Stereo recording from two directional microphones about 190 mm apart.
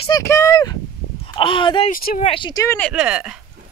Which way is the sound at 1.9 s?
50° left (ahead or behind).